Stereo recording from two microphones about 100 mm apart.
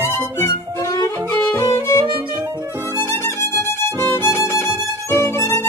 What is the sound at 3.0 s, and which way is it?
Violin, 25° left (ahead or behind).